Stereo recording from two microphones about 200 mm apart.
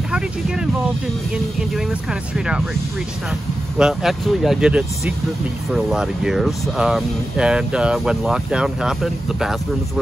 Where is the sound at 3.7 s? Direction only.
Centre (ahead or behind).